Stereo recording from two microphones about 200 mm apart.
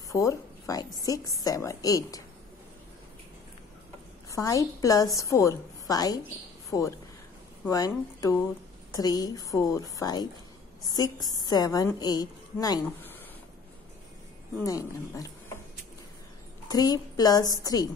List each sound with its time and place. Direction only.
0.1 s a woman's voice: 15° left (ahead or behind)
4.3 s a woman's voice: 15° left (ahead or behind)
14.6 s a woman's voice: 15° left (ahead or behind)
16.6 s a woman's voice: 20° left (ahead or behind)